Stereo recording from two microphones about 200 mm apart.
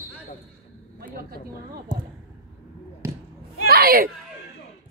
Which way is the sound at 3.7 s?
50° right (ahead or behind).